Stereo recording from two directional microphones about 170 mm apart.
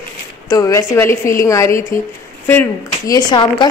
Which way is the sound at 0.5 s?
15° left (ahead or behind).